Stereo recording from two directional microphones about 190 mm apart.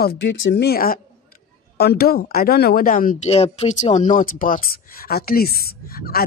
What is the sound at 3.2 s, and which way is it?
Speech, 30° left (ahead or behind).